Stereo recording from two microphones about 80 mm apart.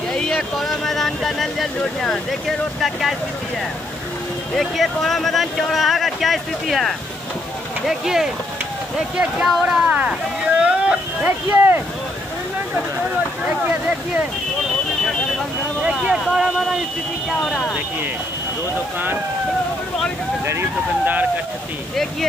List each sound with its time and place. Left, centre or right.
0.1 s a sound: centre
1.8 s speech: centre
4.6 s speech: centre
10.6 s boat: centre
11.2 s speech: right
15.8 s a sound: centre
21.0 s speech: right